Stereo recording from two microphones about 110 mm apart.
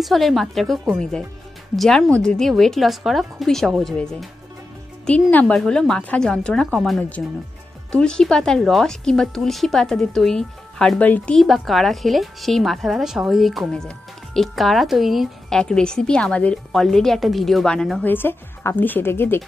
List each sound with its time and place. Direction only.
0.0 s a woman's voice: centre (ahead or behind)
5.3 s a woman's voice: 10° left (ahead or behind)
11.3 s a woman's voice: centre (ahead or behind)
18.0 s speech: 20° left (ahead or behind)